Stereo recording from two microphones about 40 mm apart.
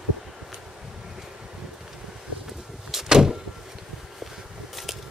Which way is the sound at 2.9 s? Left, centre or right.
Centre.